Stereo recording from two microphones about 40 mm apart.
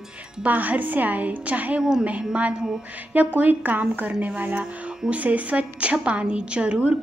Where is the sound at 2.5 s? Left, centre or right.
Centre.